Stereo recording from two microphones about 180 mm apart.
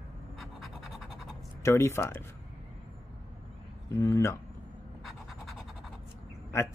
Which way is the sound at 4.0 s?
15° left (ahead or behind).